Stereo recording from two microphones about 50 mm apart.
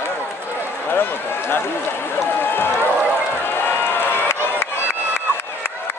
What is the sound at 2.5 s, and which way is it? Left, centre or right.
Run, left.